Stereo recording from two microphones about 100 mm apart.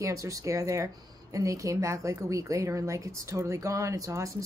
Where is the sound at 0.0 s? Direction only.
35° right (ahead or behind).